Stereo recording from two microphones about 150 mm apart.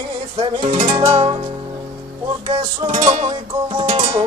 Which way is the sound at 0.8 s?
25° right (ahead or behind).